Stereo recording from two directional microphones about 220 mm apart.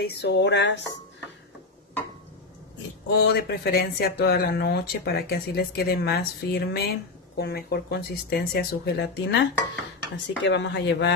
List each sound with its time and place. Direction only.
0.0 s speech: 50° left (ahead or behind)
3.1 s speech: 50° left (ahead or behind)
10.4 s speech: 55° left (ahead or behind)